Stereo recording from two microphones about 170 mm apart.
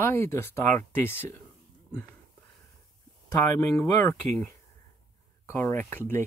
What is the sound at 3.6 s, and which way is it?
Speech, 15° left (ahead or behind).